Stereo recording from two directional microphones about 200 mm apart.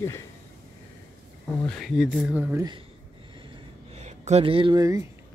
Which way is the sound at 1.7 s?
Centre (ahead or behind).